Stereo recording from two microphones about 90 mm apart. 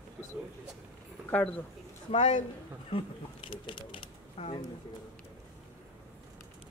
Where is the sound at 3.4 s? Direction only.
70° left (ahead or behind).